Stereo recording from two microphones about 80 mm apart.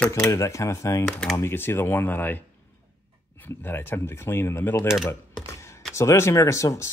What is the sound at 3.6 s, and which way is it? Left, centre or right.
Speech, left.